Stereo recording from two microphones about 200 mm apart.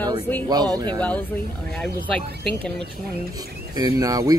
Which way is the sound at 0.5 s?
20° right (ahead or behind).